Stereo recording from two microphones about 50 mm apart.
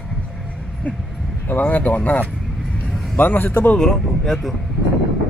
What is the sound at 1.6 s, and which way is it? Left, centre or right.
A man's voice, left.